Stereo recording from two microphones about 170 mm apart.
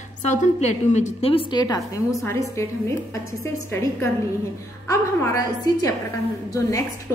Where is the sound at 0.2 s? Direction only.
45° left (ahead or behind); by 5.9 s 20° left (ahead or behind).